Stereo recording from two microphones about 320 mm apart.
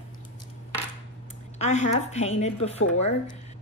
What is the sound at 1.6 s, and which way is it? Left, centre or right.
Speech, left.